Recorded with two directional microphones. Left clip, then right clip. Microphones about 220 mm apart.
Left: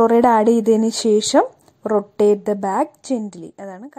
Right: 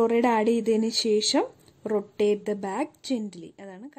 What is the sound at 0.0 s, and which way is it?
Speech, 20° left (ahead or behind).